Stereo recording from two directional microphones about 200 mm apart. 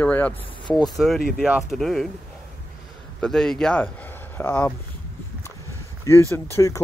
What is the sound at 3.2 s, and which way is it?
Speech, 5° left (ahead or behind).